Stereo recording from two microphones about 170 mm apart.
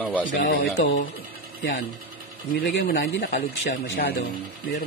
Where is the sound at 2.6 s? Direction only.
90° left; by 4.2 s 60° left (ahead or behind).